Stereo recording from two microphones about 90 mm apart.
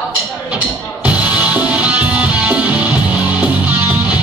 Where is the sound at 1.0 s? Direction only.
15° right (ahead or behind).